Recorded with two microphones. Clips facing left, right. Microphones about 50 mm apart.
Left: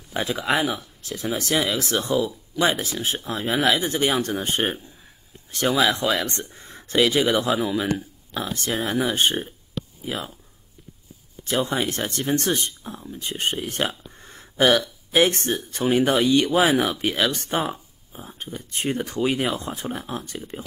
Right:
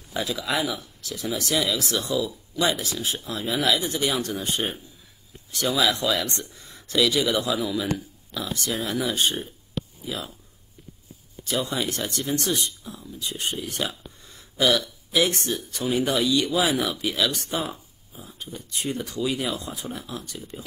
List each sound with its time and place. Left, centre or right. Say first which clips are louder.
0.1 s speech: left 4 dB; left
11.4 s speech: left 3 dB; left